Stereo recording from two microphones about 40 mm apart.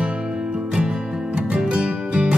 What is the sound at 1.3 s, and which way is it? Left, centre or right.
Music, right.